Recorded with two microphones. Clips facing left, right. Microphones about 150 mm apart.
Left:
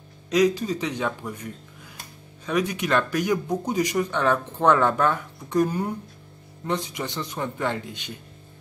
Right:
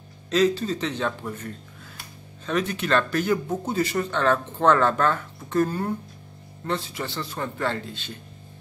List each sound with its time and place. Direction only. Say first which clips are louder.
0.3 s speech: left 1 dB; 15° left (ahead or behind)